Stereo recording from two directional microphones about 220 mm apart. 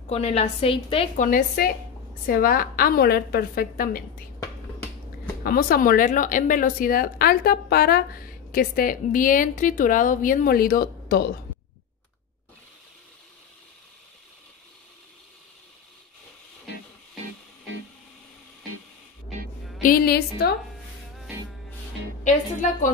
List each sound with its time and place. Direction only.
0.1 s a woman's voice: 30° left (ahead or behind)
5.4 s a woman's voice: 45° left (ahead or behind)
19.8 s a woman's voice: 40° left (ahead or behind)
22.2 s a woman's voice: 35° left (ahead or behind)